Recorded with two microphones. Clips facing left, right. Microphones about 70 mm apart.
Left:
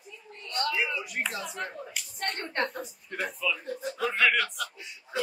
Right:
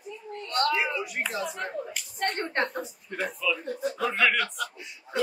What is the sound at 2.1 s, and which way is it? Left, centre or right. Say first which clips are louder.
Speech: right 5 dB; right.